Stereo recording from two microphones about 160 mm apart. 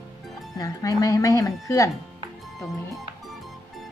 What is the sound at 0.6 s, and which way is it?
Speech, 20° left (ahead or behind).